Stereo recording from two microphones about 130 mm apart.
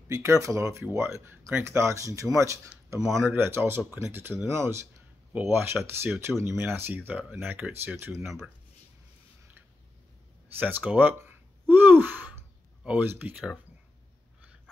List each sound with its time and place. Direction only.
0.1 s speech: 25° right (ahead or behind)
10.6 s speech: 10° right (ahead or behind)